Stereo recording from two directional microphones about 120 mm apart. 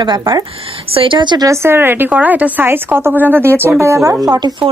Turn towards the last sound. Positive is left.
turn(degrees=-35)  # may be behind; listen again after turning